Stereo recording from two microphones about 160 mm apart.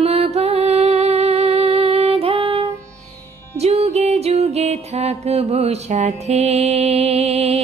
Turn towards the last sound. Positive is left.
turn(degrees=-40)  # may be behind; listen again after turning